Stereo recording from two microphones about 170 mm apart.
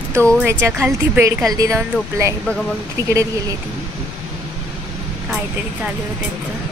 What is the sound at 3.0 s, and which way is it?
Speech, 20° right (ahead or behind).